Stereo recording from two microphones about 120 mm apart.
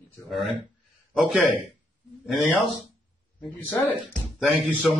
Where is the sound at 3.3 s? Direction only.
15° left (ahead or behind).